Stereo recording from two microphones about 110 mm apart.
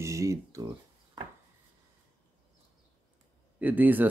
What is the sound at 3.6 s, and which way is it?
Speech, 15° right (ahead or behind).